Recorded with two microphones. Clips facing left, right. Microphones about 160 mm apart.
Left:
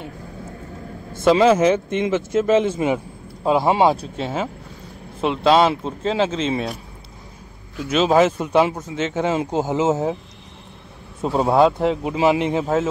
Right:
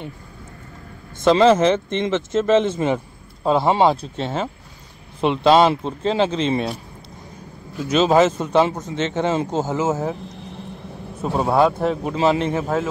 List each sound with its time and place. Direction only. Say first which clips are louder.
1.1 s speech: even; 10° left (ahead or behind)
7.9 s speech: right 1 dB; 5° left (ahead or behind); by 10.1 s 20° left (ahead or behind)
11.3 s speech: left 2 dB; 20° left (ahead or behind)